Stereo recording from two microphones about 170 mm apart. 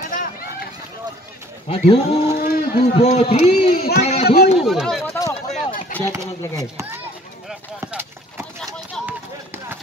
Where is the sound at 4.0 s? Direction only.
40° left (ahead or behind).